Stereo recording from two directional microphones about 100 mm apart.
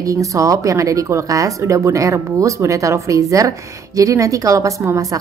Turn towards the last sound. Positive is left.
turn(degrees=-35)  # may be behind; listen again after turning